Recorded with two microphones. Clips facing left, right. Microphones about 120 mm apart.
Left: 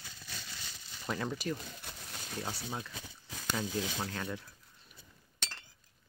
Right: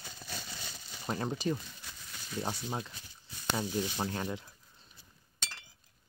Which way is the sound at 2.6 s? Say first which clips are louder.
Right 3 dB; 25° right (ahead or behind).